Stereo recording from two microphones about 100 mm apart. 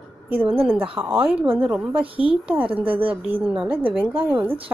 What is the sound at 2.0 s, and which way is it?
Speech, 65° right (ahead or behind).